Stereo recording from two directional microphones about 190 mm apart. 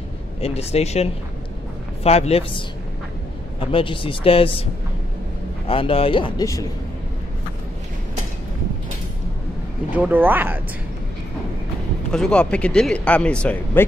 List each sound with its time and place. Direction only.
0.4 s speech: 35° left (ahead or behind)
5.7 s speech: 30° left (ahead or behind)
9.9 s speech: 10° right (ahead or behind)
12.1 s speech: 5° left (ahead or behind)